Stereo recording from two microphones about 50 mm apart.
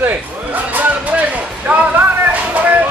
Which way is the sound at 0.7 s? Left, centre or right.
Right.